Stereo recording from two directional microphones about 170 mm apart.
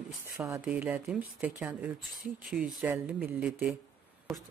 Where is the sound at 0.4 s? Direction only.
15° right (ahead or behind).